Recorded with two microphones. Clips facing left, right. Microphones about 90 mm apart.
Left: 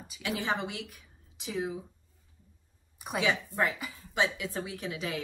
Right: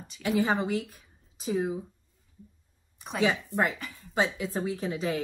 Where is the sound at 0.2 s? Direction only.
35° right (ahead or behind).